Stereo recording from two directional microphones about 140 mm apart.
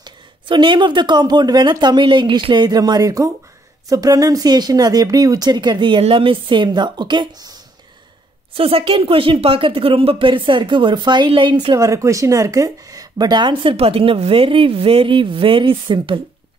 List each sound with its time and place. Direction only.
0.0 s speech: 35° right (ahead or behind)
8.5 s speech: 40° right (ahead or behind)